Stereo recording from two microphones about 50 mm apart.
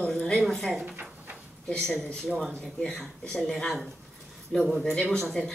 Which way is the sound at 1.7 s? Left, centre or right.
Centre.